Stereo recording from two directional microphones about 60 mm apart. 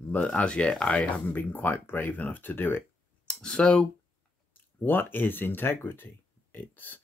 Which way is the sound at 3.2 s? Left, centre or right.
Centre.